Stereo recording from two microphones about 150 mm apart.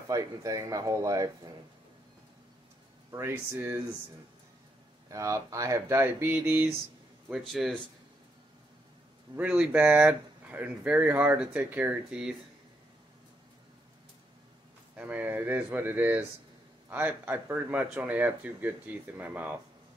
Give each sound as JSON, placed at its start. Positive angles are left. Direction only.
{"t": 0.1, "sound": "speech", "side_deg": -25}
{"t": 3.1, "sound": "speech", "side_deg": -15}
{"t": 5.1, "sound": "speech", "side_deg": -20}
{"t": 9.4, "sound": "speech", "side_deg": -10}
{"t": 15.0, "sound": "speech", "side_deg": -10}